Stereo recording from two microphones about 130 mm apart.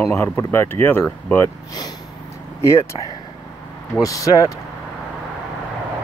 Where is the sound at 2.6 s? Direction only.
20° left (ahead or behind).